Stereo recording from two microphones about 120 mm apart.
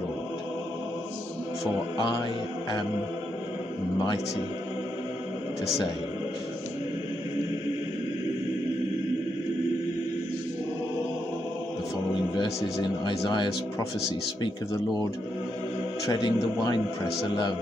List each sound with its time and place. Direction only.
13.0 s speech: 40° left (ahead or behind)
16.1 s speech: 35° left (ahead or behind)